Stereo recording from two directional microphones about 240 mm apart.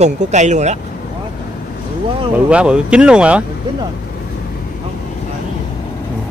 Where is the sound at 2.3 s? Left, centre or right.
Centre.